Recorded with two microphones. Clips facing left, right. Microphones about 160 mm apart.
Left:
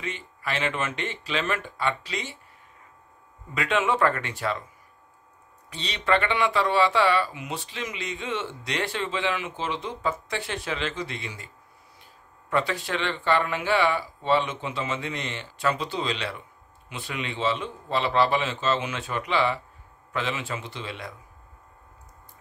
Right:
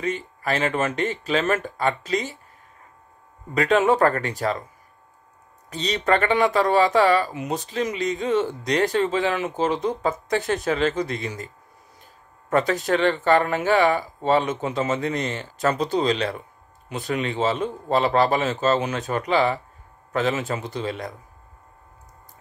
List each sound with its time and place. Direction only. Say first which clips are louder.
0.0 s speech: right 7 dB; 40° right (ahead or behind)
3.5 s speech: right 6 dB; 40° right (ahead or behind)
5.7 s speech: right 4 dB; 40° right (ahead or behind)